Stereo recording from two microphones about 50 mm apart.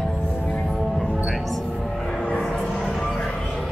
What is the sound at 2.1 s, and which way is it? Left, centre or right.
Music, centre.